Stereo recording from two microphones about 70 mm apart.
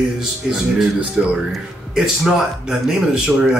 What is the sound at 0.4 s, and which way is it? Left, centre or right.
Speech, centre.